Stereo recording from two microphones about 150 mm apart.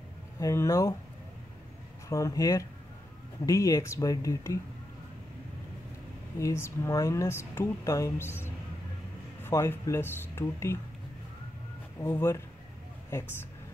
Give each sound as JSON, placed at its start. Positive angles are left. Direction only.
{"t": 0.4, "sound": "speech", "side_deg": 20}
{"t": 2.0, "sound": "speech", "side_deg": 20}
{"t": 6.4, "sound": "speech", "side_deg": 20}
{"t": 12.0, "sound": "speech", "side_deg": 20}